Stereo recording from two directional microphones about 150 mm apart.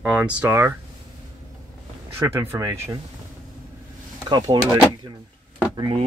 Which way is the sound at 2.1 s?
15° right (ahead or behind).